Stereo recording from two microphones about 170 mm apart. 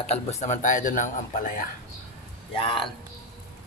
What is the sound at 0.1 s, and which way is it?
Speech, 40° left (ahead or behind).